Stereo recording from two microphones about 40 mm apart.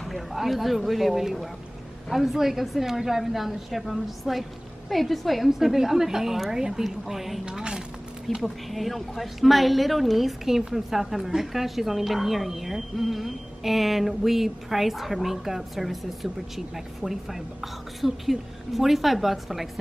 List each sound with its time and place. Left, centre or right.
0.0 s a woman's voice: centre
5.5 s a woman's voice: centre
7.4 s speech: right
8.4 s a woman's voice: centre